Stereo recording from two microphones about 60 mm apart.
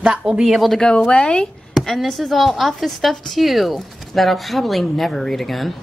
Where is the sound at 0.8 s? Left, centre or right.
Centre.